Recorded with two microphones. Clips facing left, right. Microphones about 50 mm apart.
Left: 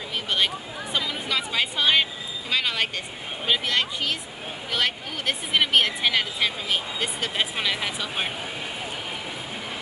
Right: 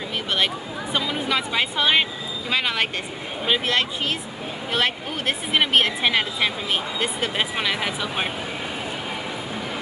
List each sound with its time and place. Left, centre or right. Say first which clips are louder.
0.9 s a woman's voice: right 3 dB; centre
7.3 s speech: even; centre